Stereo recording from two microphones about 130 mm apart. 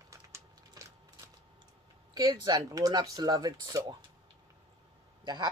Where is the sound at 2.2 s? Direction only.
30° right (ahead or behind).